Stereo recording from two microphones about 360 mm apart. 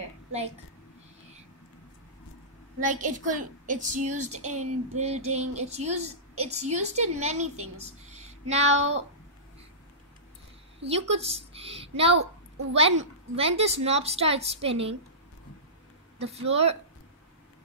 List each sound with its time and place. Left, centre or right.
2.9 s a child's voice: right
7.4 s a woman's voice: right
7.8 s speech: centre
10.8 s a woman's voice: centre
16.3 s a woman's voice: centre